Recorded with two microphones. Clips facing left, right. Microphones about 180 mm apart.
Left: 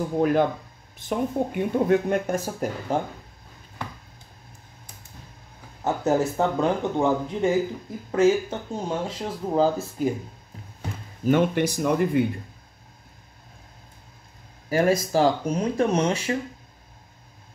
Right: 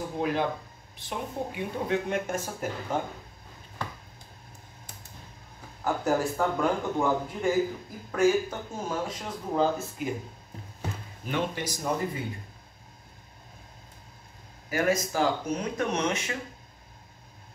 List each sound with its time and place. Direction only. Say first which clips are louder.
0.2 s speech: left 7 dB; 50° left (ahead or behind)
5.9 s speech: left 4 dB; 25° left (ahead or behind)
11.2 s speech: left 10 dB; 55° left (ahead or behind)
14.7 s speech: left 5 dB; 30° left (ahead or behind)